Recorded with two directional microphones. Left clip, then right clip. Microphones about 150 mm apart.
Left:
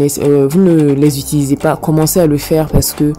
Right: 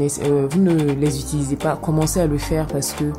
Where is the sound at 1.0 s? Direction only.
35° left (ahead or behind).